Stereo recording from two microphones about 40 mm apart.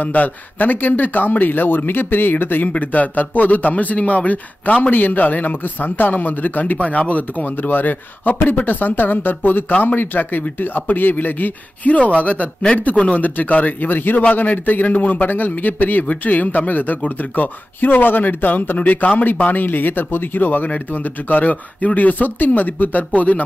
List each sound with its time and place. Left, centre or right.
0.0 s a man's voice: left
2.8 s speech: left
4.9 s a man's voice: left
7.5 s a man's voice: left
11.9 s speech: left
13.2 s a man's voice: left
17.7 s a man's voice: left